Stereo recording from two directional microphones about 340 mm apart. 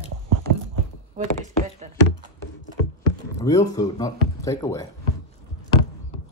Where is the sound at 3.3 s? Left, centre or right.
Centre.